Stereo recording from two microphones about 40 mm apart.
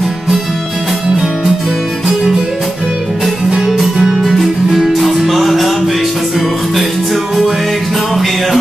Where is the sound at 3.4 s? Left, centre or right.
Centre.